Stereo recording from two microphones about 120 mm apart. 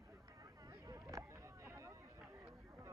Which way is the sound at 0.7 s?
25° right (ahead or behind).